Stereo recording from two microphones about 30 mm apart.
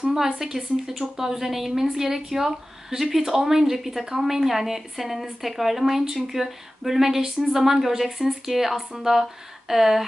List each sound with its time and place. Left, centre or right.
0.1 s speech: centre